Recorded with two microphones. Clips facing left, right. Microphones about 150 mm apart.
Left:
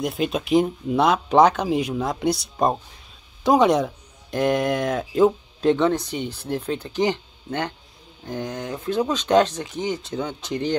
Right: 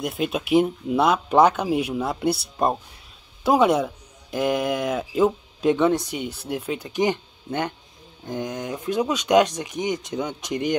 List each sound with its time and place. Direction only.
0.0 s speech: centre (ahead or behind)
3.4 s speech: 5° right (ahead or behind)